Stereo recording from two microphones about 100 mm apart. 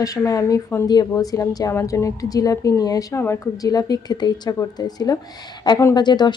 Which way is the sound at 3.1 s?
25° left (ahead or behind).